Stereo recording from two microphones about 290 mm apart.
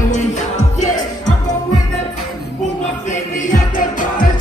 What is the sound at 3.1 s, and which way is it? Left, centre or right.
Music, left.